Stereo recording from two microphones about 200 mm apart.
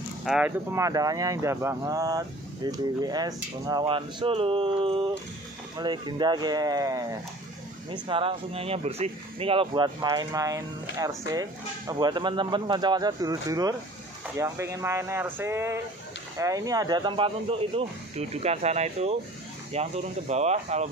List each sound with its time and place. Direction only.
0.2 s speech: 5° right (ahead or behind); by 20.9 s 35° right (ahead or behind)